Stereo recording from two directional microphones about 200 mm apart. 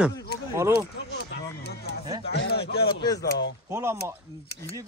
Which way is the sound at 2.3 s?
55° left (ahead or behind).